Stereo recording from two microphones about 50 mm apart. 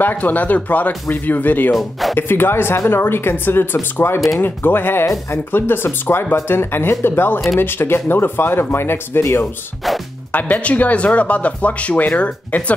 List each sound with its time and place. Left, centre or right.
0.0 s speech: left
1.8 s speech: centre
2.1 s speech: left
10.3 s speech: left